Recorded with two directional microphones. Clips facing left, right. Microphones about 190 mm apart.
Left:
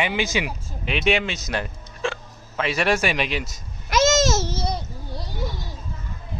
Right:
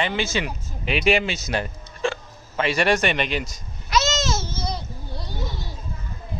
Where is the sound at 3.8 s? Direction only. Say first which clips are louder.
Left 4 dB; 50° left (ahead or behind).